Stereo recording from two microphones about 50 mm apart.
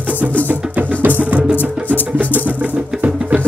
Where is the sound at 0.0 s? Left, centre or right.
Right.